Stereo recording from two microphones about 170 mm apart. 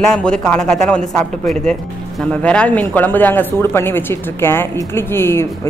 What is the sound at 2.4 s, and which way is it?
Speech, 5° left (ahead or behind).